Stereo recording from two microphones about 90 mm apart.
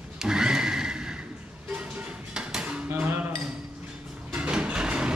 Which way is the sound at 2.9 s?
25° right (ahead or behind).